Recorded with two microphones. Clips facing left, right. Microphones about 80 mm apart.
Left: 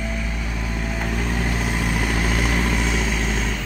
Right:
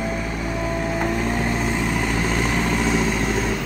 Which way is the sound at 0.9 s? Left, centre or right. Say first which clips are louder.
Right 2 dB; centre.